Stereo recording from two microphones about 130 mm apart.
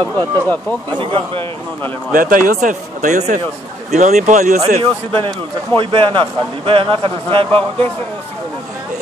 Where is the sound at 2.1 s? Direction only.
90° right; by 4.6 s 65° right (ahead or behind).